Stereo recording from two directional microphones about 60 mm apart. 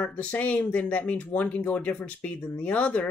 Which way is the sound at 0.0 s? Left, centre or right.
Left.